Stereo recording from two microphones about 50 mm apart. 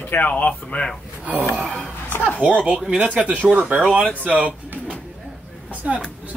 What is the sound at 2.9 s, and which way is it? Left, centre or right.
Speech, right.